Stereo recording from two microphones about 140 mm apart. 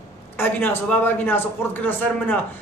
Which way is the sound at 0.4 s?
15° left (ahead or behind).